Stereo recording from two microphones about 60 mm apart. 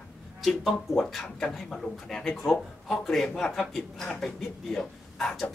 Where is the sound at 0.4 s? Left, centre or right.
Centre.